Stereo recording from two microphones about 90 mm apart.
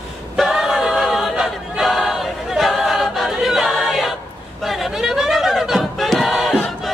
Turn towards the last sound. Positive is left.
turn(degrees=0)  # may be behind; listen again after turning